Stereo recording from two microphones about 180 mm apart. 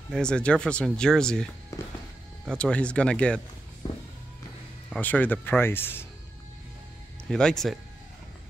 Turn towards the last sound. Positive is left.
turn(degrees=5)  # may be behind; listen again after turning